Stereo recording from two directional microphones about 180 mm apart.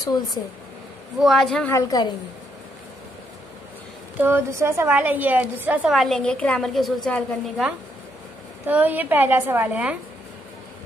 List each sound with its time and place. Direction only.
0.0 s a woman's voice: 20° left (ahead or behind)
1.2 s a woman's voice: centre (ahead or behind)
1.7 s a woman's voice: 20° left (ahead or behind)
4.2 s a woman's voice: 15° right (ahead or behind); by 7.7 s centre (ahead or behind)
8.6 s a woman's voice: 10° right (ahead or behind)